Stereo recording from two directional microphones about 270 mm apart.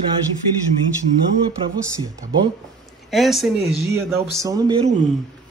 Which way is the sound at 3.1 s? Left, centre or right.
Centre.